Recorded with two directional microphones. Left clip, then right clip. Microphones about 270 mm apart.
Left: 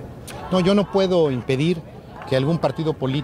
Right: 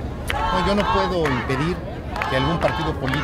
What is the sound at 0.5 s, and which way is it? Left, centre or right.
Speech, left.